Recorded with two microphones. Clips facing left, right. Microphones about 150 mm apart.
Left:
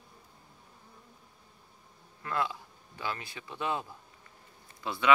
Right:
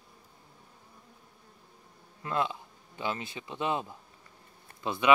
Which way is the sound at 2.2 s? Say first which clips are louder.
Right 2 dB; 20° right (ahead or behind).